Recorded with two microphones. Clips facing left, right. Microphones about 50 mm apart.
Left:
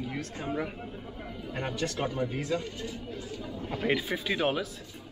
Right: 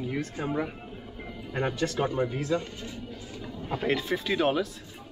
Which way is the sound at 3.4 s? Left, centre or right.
Centre.